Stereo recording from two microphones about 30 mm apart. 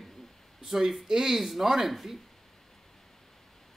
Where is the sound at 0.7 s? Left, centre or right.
Centre.